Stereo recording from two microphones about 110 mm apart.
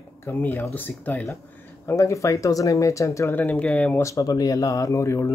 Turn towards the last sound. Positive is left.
turn(degrees=25)  # may be behind; listen again after turning